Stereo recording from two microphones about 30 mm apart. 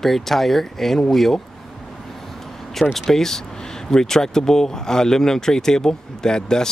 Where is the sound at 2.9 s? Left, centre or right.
Centre.